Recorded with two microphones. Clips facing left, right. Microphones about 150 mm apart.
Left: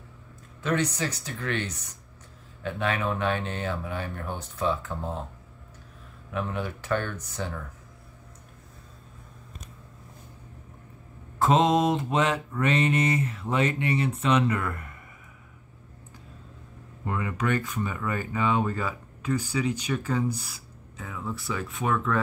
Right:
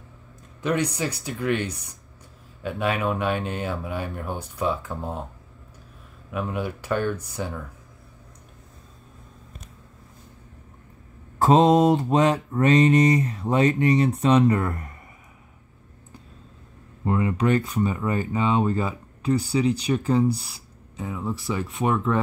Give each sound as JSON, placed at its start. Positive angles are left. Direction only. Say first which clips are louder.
{"t": 0.6, "sound": "speech", "louder": "right 2 dB", "side_deg": -15}
{"t": 6.3, "sound": "speech", "louder": "right 3 dB", "side_deg": -10}
{"t": 11.3, "sound": "mantra", "louder": "right 5 dB", "side_deg": -35}
{"t": 17.0, "sound": "mantra", "louder": "right 7 dB", "side_deg": -25}
{"t": 21.0, "sound": "speech", "louder": "right 5 dB", "side_deg": -25}